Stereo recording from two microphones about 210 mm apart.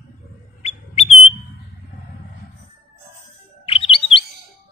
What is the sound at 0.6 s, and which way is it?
Bird, 30° left (ahead or behind).